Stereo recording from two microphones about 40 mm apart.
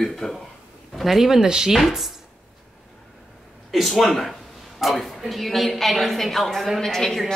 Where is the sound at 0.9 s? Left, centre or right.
Centre.